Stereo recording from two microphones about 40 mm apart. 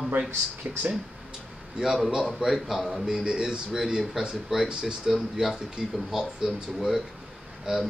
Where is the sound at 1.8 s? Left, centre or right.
Centre.